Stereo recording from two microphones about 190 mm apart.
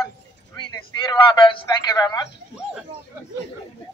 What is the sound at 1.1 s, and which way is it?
A man's voice, 25° left (ahead or behind).